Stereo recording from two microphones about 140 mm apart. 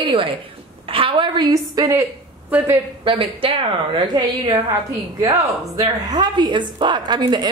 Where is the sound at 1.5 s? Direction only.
25° right (ahead or behind).